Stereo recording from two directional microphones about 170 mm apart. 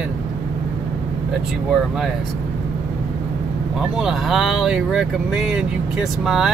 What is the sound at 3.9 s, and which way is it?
Speech, centre (ahead or behind).